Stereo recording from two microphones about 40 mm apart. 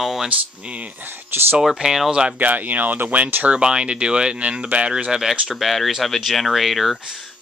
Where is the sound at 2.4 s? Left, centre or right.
Right.